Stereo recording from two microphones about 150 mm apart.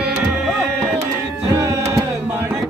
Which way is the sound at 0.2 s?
5° right (ahead or behind).